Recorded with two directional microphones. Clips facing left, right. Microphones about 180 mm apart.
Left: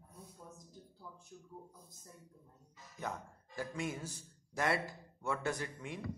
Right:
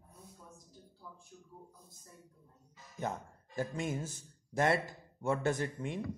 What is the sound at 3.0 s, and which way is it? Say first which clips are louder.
Speech: right 4 dB; 25° right (ahead or behind).